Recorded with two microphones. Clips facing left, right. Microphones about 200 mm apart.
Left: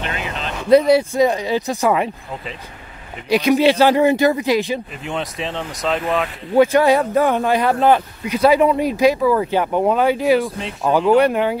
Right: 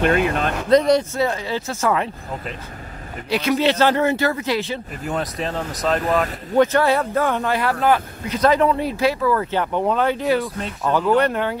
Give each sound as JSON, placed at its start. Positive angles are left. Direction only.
{"t": 0.0, "sound": "speech", "side_deg": -50}
{"t": 0.7, "sound": "speech", "side_deg": 10}
{"t": 3.3, "sound": "speech", "side_deg": 15}
{"t": 5.1, "sound": "speech", "side_deg": 0}
{"t": 6.5, "sound": "speech", "side_deg": 10}
{"t": 8.3, "sound": "speech", "side_deg": 10}